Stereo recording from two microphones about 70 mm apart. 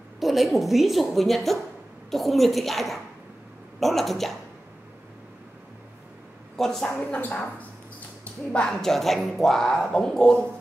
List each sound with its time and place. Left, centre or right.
0.2 s a woman's voice: centre
6.5 s a woman's voice: centre
8.2 s a sound: left
8.6 s speech: centre